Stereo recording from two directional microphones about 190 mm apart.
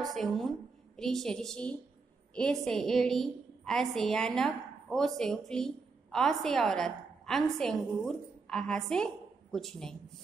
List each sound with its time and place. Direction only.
0.0 s a woman's voice: centre (ahead or behind)